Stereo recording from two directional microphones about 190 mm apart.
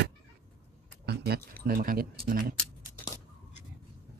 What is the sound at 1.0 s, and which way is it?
Keys jangling, 55° right (ahead or behind).